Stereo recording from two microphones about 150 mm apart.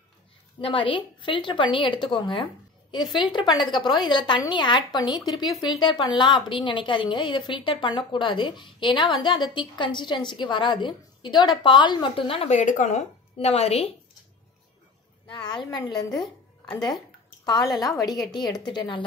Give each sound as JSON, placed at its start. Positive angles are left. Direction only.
{"t": 0.6, "sound": "a woman's voice", "side_deg": 35}
{"t": 12.5, "sound": "a woman's voice", "side_deg": 55}
{"t": 15.2, "sound": "a woman's voice", "side_deg": 30}
{"t": 17.7, "sound": "a woman's voice", "side_deg": 25}